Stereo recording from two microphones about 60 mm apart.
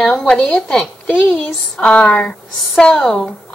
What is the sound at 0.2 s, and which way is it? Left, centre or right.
A woman's voice, centre.